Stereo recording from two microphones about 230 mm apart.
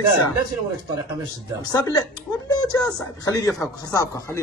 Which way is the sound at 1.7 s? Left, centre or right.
Centre.